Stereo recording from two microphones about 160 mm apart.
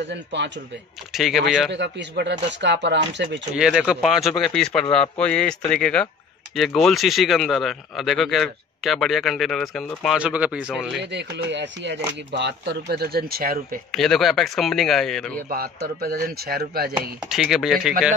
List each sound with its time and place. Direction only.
0.1 s speech: 90° right
1.1 s speech: centre (ahead or behind)
1.7 s speech: 90° right
3.5 s speech: 5° right (ahead or behind)
11.0 s speech: 90° right; by 13.7 s 65° right (ahead or behind)
13.9 s speech: centre (ahead or behind)
15.5 s speech: 65° right (ahead or behind)
17.2 s speech: 5° right (ahead or behind)